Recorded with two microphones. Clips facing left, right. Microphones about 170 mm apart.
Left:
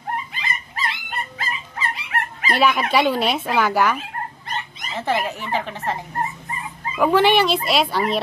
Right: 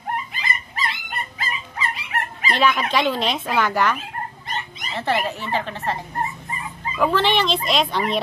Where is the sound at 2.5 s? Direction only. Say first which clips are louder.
Left 2 dB; 10° left (ahead or behind).